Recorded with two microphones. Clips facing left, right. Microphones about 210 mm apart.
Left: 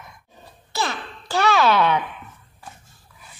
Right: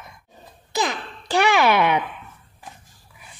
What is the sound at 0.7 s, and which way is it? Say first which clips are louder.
Babbling: right 2 dB; 15° right (ahead or behind).